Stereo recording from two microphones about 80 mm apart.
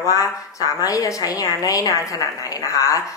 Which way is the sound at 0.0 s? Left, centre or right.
Left.